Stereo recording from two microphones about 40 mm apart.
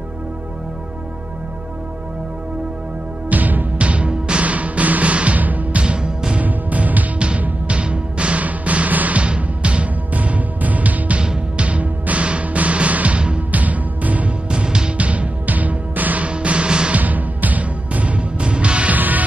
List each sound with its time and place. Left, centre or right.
3.3 s music: right
3.7 s music: right
5.8 s music: right
6.4 s music: right
7.2 s music: right
9.2 s music: right
11.1 s music: right
14.5 s music: right
15.0 s music: right
16.3 s music: right
16.9 s music: right
18.9 s music: right